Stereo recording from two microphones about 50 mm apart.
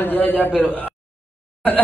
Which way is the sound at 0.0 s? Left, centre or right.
Left.